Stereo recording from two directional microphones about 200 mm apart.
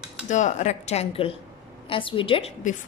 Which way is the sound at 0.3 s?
35° left (ahead or behind).